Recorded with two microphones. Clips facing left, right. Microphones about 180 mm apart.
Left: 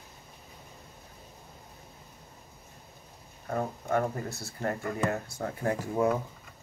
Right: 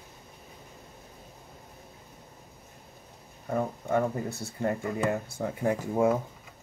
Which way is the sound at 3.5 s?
15° right (ahead or behind).